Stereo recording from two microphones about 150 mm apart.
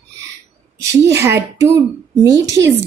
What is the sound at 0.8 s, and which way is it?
A woman's voice, 20° right (ahead or behind).